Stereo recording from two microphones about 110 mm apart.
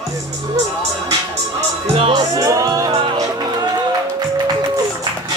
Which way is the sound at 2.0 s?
55° right (ahead or behind).